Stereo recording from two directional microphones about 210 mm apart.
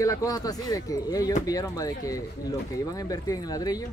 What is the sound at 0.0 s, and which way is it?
Speech, 15° left (ahead or behind).